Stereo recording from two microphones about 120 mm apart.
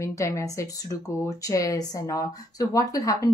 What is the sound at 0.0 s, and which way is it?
A woman's voice, 25° left (ahead or behind).